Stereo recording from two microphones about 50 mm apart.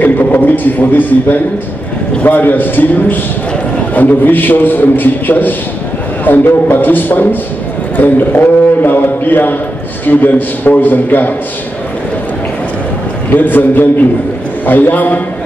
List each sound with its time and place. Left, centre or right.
0.0 s a man's voice: left
13.3 s a man's voice: left